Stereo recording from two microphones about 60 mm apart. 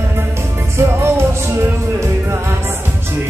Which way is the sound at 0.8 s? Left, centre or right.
Right.